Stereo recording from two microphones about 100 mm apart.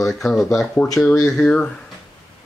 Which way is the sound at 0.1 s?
5° left (ahead or behind).